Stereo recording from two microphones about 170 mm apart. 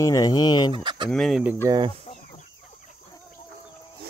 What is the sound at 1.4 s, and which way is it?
Speech, 10° right (ahead or behind).